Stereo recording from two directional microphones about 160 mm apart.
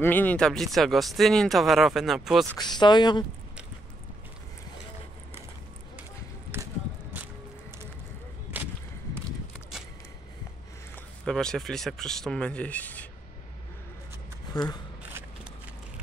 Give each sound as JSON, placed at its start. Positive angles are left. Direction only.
{"t": 0.0, "sound": "speech", "side_deg": 10}
{"t": 2.5, "sound": "speech", "side_deg": 25}
{"t": 8.5, "sound": "whip", "side_deg": -10}
{"t": 11.2, "sound": "speech", "side_deg": 5}
{"t": 14.5, "sound": "speech", "side_deg": 25}